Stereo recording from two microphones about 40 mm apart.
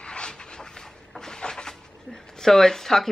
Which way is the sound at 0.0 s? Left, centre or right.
Left.